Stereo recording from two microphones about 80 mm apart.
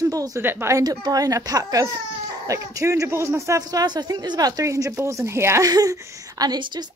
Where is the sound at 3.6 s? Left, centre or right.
Right.